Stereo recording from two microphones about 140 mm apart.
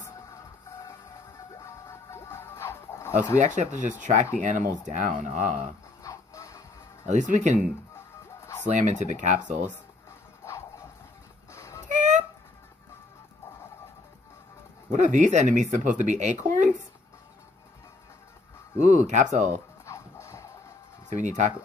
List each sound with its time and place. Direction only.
1.6 s music: 20° left (ahead or behind)
3.3 s speech: 60° right (ahead or behind)
6.0 s music: 20° left (ahead or behind)
7.1 s speech: 60° right (ahead or behind)
8.6 s speech: 60° right (ahead or behind)
10.4 s music: 20° left (ahead or behind)
11.5 s a sound: 20° left (ahead or behind)
11.9 s a sound: 60° right (ahead or behind)
14.9 s speech: 60° right (ahead or behind)
18.8 s speech: 60° right (ahead or behind)
19.9 s music: 20° left (ahead or behind)
21.1 s speech: 60° right (ahead or behind)